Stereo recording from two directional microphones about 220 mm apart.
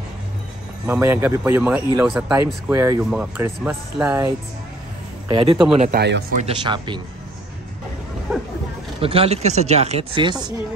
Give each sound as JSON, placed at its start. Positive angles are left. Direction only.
{"t": 0.8, "sound": "speech", "side_deg": -10}
{"t": 5.3, "sound": "speech", "side_deg": -20}
{"t": 5.9, "sound": "speech", "side_deg": -50}
{"t": 6.3, "sound": "speech", "side_deg": -25}
{"t": 9.0, "sound": "speech", "side_deg": -25}